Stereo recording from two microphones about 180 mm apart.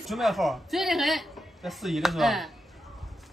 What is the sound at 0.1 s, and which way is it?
A woman's voice, centre (ahead or behind).